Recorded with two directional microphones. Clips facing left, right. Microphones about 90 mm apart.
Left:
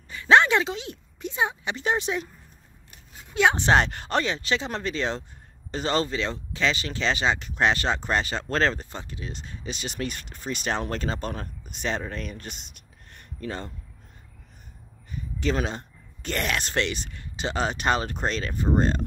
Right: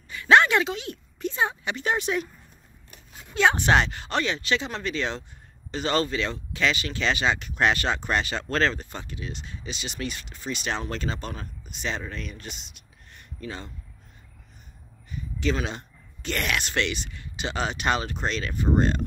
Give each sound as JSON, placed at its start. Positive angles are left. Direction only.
{"t": 0.1, "sound": "a woman's voice", "side_deg": 25}
{"t": 3.5, "sound": "speech", "side_deg": 25}
{"t": 3.8, "sound": "speech", "side_deg": 45}
{"t": 15.0, "sound": "speech", "side_deg": 40}